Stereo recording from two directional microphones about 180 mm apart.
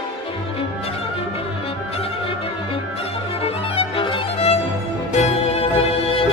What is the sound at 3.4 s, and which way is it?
Music, 30° left (ahead or behind).